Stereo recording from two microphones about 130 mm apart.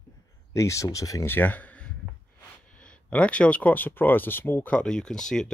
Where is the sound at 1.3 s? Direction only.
15° left (ahead or behind).